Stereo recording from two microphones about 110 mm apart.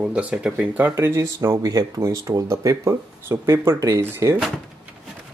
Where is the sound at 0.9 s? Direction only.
25° right (ahead or behind).